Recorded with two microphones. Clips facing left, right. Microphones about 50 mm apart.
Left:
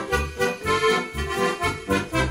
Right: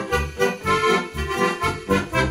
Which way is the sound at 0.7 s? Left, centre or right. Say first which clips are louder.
Right 1 dB; right.